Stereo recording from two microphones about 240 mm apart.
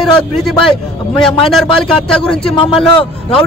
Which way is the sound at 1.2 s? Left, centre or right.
Centre.